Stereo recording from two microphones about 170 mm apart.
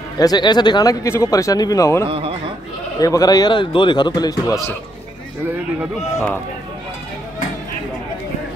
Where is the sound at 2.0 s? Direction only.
35° right (ahead or behind).